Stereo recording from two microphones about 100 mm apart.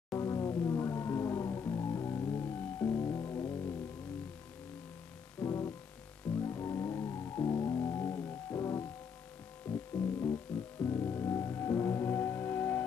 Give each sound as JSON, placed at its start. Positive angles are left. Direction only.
{"t": 0.1, "sound": "music", "side_deg": 30}
{"t": 5.4, "sound": "music", "side_deg": 35}